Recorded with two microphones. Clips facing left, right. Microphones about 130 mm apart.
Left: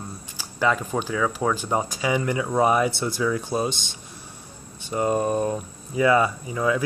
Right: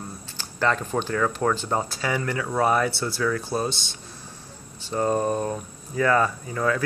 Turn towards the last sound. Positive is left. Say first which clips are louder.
# left 1 dB
turn(degrees=15)  # may be behind; listen again after turning